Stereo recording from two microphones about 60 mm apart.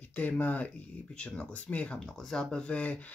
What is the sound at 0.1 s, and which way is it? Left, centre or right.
Speech, left.